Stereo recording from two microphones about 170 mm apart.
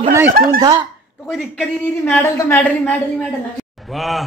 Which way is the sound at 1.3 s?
Centre (ahead or behind).